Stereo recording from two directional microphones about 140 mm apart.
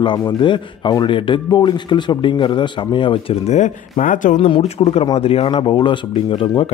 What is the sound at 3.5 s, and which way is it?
Speech, 60° left (ahead or behind).